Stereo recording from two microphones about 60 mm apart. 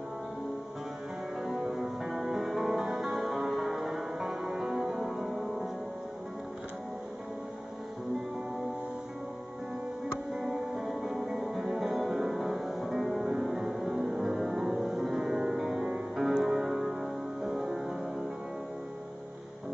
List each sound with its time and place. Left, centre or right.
1.4 s music: centre
10.3 s music: centre